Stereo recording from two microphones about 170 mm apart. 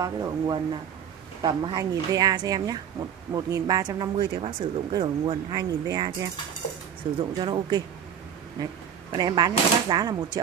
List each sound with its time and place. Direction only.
0.0 s speech: 20° right (ahead or behind)
7.2 s speech: 25° right (ahead or behind)